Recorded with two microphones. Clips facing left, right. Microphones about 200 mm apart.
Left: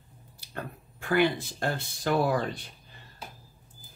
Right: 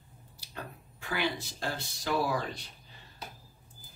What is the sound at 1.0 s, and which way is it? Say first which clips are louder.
Speech: left 8 dB; 55° left (ahead or behind).